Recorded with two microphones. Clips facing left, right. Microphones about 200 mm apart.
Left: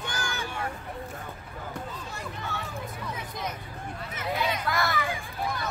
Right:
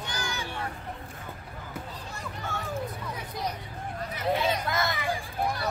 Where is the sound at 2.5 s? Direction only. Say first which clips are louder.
Right 2 dB; 50° right (ahead or behind).